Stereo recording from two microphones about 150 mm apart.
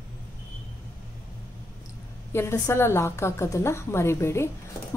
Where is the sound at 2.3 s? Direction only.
15° left (ahead or behind).